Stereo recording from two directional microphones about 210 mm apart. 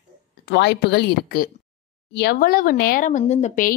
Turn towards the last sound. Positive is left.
turn(degrees=35)  # may be behind; listen again after turning